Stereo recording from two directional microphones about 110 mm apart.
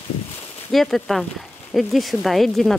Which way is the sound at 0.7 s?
Centre (ahead or behind).